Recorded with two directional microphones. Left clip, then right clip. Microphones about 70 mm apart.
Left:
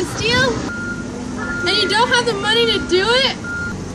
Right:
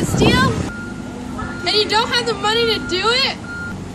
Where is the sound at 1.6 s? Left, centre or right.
Right.